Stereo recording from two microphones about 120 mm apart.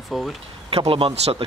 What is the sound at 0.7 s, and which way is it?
Speech, 50° right (ahead or behind).